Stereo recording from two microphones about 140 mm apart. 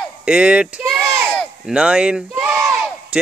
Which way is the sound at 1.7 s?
5° right (ahead or behind).